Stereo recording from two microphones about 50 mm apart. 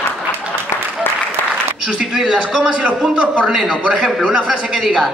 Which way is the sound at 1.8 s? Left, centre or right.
Right.